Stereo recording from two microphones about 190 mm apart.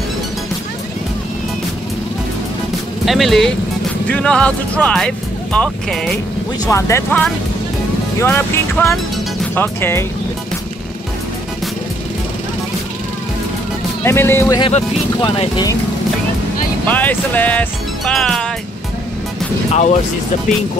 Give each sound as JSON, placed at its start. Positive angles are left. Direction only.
{"t": 3.1, "sound": "speech", "side_deg": 0}
{"t": 6.6, "sound": "speech", "side_deg": 15}
{"t": 14.0, "sound": "speech", "side_deg": 10}
{"t": 15.2, "sound": "speech", "side_deg": 30}
{"t": 16.8, "sound": "music", "side_deg": 10}
{"t": 19.7, "sound": "speech", "side_deg": 35}